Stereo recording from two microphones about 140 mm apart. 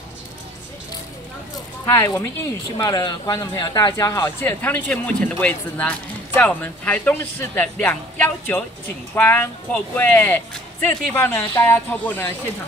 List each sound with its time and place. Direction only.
1.9 s speech: 15° left (ahead or behind)
2.8 s speech: 30° left (ahead or behind); by 12.3 s 10° left (ahead or behind)